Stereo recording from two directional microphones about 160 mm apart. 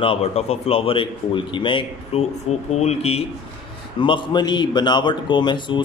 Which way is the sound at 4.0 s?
30° left (ahead or behind).